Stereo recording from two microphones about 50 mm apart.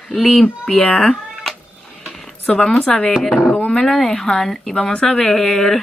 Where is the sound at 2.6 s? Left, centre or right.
Centre.